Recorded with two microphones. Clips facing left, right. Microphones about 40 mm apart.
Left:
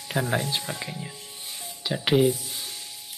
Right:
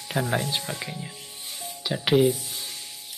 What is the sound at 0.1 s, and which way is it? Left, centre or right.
Speech, centre.